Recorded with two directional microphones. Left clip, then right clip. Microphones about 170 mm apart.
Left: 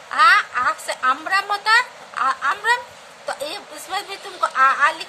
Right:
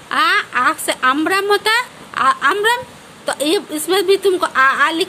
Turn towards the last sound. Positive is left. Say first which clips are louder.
# right 3 dB
turn(degrees=-60)  # may be behind; listen again after turning